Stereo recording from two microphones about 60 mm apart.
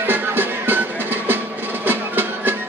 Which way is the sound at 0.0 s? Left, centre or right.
Right.